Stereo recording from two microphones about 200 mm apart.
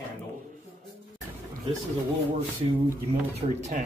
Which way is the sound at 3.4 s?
30° right (ahead or behind).